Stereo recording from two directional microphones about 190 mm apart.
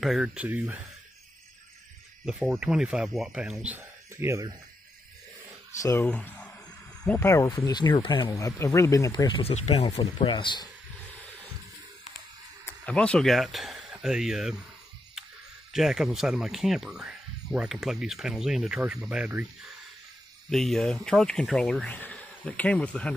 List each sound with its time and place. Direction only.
0.0 s speech: centre (ahead or behind)
2.2 s speech: 5° right (ahead or behind)
5.8 s speech: 15° left (ahead or behind)
12.6 s speech: 5° left (ahead or behind)
15.7 s speech: centre (ahead or behind)